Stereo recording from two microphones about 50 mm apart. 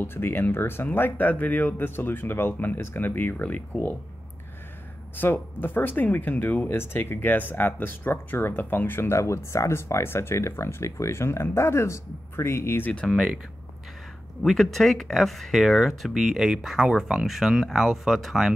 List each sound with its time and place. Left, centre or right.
0.0 s speech: left
2.0 s speech: left
3.7 s speech: left
5.1 s speech: left
6.7 s speech: left
9.1 s speech: left
10.0 s speech: left
13.0 s speech: centre
14.6 s speech: centre
16.1 s speech: centre